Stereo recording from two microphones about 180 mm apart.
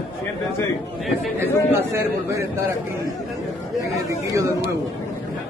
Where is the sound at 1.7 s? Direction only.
15° right (ahead or behind).